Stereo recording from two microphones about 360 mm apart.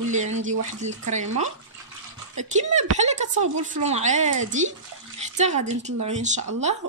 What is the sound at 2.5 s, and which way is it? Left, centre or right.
A woman's voice, centre.